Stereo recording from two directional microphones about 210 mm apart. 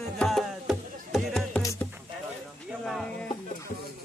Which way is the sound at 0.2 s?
Centre (ahead or behind).